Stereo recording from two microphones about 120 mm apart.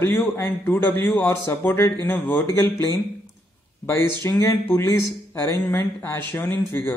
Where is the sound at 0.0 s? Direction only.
20° left (ahead or behind).